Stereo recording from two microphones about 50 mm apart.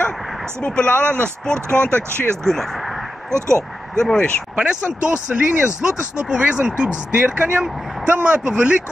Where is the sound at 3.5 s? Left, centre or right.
Centre.